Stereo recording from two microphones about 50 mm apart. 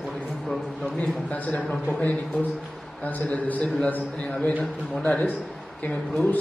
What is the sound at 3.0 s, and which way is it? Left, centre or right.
A man's voice, left.